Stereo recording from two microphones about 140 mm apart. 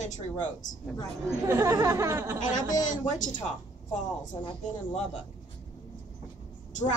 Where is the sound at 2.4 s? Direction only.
65° left (ahead or behind).